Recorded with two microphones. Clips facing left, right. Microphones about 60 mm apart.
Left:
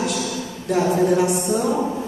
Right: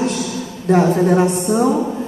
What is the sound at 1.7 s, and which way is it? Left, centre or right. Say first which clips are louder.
Speech: right 3 dB; centre.